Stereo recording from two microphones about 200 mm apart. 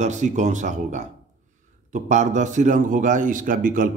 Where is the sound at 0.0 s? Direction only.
35° right (ahead or behind).